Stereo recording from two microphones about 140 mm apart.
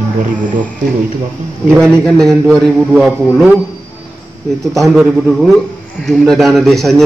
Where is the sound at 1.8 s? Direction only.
5° left (ahead or behind).